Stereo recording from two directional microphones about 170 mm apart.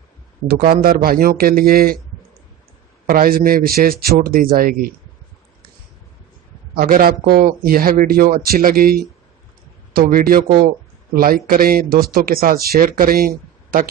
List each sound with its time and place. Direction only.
0.5 s speech: 60° right (ahead or behind)
3.1 s speech: 60° right (ahead or behind)
6.7 s speech: 60° right (ahead or behind)